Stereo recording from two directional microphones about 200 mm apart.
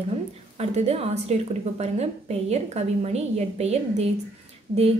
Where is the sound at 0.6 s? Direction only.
30° right (ahead or behind).